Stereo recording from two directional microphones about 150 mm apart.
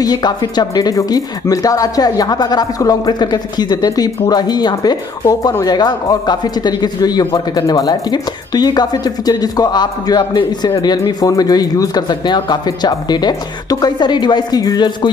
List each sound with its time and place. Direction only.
0.0 s speech: 30° left (ahead or behind)